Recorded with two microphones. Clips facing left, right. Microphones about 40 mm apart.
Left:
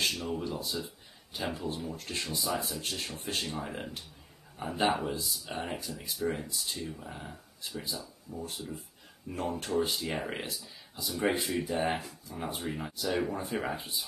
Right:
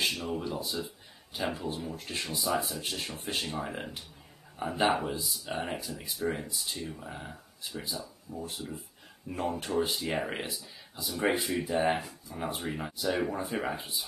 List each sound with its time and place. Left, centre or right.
0.0 s speech: centre